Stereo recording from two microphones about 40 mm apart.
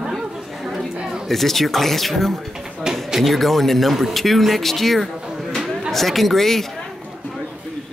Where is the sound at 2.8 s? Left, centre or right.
Centre.